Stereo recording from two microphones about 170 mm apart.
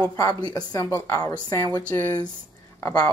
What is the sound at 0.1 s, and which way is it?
A woman's voice, 20° left (ahead or behind).